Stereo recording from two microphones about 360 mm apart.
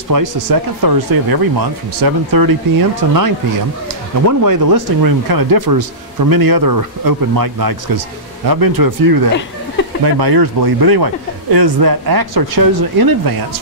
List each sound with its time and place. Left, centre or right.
0.1 s speech: right
4.3 s speech: right
10.0 s speech: right
11.5 s speech: right